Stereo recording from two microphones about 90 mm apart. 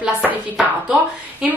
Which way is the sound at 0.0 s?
15° right (ahead or behind).